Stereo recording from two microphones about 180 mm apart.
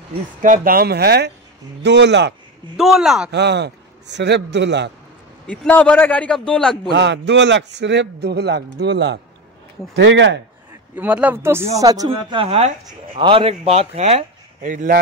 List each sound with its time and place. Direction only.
0.4 s speech: 50° right (ahead or behind)
1.8 s a man's voice: 75° right (ahead or behind)
2.8 s speech: centre (ahead or behind)
3.3 s a man's voice: 70° right (ahead or behind)
5.5 s a man's voice: 10° left (ahead or behind)
6.9 s a man's voice: 75° right (ahead or behind)
11.0 s speech: 10° right (ahead or behind)
12.1 s speech: 30° right (ahead or behind); by 15.0 s 45° right (ahead or behind)